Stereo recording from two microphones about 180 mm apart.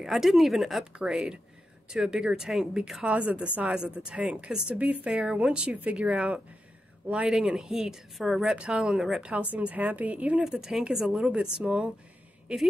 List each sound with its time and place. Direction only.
0.0 s speech: centre (ahead or behind)